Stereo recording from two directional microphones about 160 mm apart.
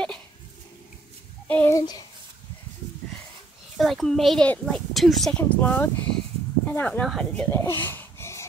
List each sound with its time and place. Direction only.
1.5 s a child's voice: 15° left (ahead or behind)
3.7 s speech: centre (ahead or behind)
7.5 s wheeze: 15° left (ahead or behind)